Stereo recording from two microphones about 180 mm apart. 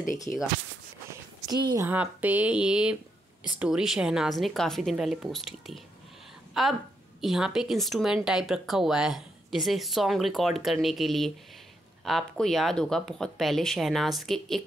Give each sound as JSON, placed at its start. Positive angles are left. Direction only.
{"t": 0.3, "sound": "speech", "side_deg": 5}
{"t": 1.1, "sound": "a sound", "side_deg": -25}
{"t": 1.9, "sound": "speech", "side_deg": -10}